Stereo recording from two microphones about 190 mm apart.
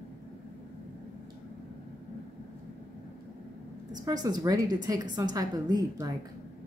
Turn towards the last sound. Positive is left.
turn(degrees=-20)  # may be behind; listen again after turning